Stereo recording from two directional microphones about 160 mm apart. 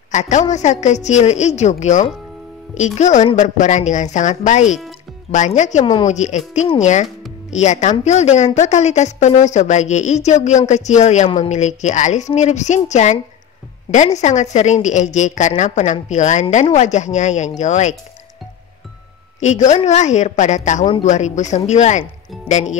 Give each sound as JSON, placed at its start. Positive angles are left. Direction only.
{"t": 0.1, "sound": "a woman's voice", "side_deg": 50}
{"t": 19.4, "sound": "a woman's voice", "side_deg": 45}